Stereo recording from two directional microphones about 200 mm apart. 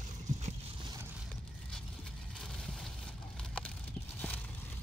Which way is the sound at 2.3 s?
Centre (ahead or behind).